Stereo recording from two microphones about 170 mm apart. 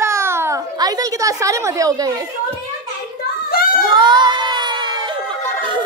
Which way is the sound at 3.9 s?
25° right (ahead or behind).